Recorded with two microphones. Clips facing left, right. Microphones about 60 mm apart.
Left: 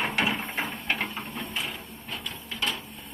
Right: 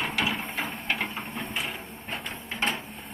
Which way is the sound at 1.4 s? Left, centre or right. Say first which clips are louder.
Right 1 dB; right.